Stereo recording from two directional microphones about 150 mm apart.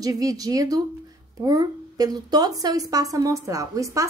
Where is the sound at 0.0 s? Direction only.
25° right (ahead or behind).